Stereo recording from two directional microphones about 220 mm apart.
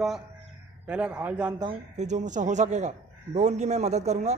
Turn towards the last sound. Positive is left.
turn(degrees=-30)  # may be behind; listen again after turning